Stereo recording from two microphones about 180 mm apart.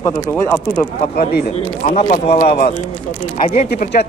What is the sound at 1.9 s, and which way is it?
Speech, 40° left (ahead or behind).